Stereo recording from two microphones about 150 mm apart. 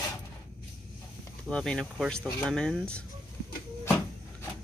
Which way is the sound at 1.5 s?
5° left (ahead or behind).